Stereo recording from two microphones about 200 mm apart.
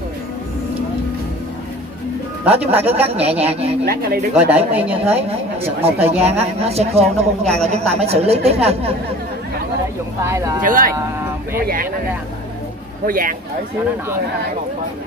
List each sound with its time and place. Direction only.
2.4 s a woman's voice: 30° right (ahead or behind)
3.8 s speech: 50° right (ahead or behind)
4.4 s speech: 10° right (ahead or behind)
5.8 s a woman's voice: 30° right (ahead or behind)
7.4 s speech: 5° left (ahead or behind)
8.0 s speech: 30° right (ahead or behind)
10.2 s speech: 15° right (ahead or behind)
10.6 s speech: 45° right (ahead or behind)
13.0 s speech: 45° right (ahead or behind)